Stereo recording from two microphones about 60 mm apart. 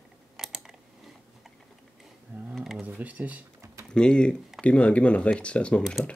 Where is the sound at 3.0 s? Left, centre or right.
Right.